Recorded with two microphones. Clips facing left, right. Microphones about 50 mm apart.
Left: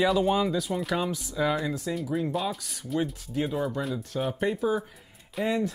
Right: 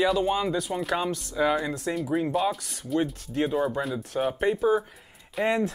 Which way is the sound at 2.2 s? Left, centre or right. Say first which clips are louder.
Right 4 dB; centre.